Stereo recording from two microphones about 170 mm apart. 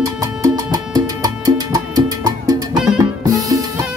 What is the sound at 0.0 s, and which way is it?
Music, 20° right (ahead or behind).